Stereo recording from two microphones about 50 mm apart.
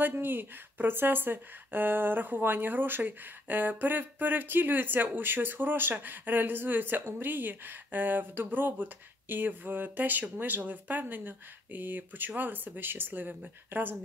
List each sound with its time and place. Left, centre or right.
0.0 s speech: right